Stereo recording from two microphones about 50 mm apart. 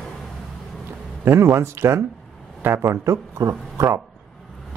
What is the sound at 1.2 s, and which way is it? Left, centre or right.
Speech, right.